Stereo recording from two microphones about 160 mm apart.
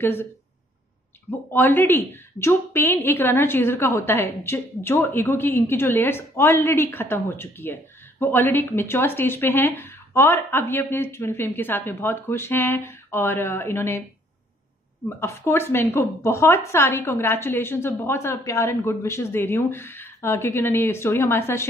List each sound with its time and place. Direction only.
0.0 s a woman's voice: 15° left (ahead or behind)
1.5 s a woman's voice: 10° left (ahead or behind)
15.0 s a woman's voice: 15° left (ahead or behind)